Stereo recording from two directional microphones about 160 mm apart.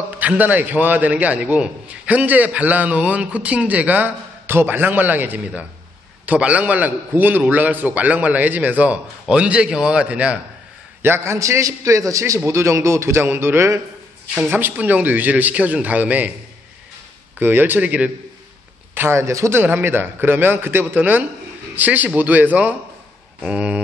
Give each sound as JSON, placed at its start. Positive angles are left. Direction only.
{"t": 0.2, "sound": "a man's voice", "side_deg": -10}
{"t": 17.4, "sound": "a man's voice", "side_deg": -10}
{"t": 23.4, "sound": "a sound", "side_deg": -5}